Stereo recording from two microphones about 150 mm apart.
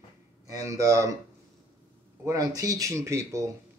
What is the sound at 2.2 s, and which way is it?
Speech, 25° right (ahead or behind).